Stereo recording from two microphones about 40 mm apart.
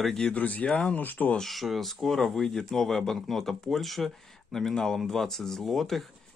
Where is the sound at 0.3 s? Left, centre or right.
Left.